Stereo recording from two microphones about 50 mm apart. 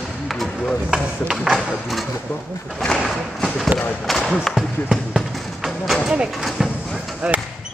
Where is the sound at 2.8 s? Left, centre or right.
Centre.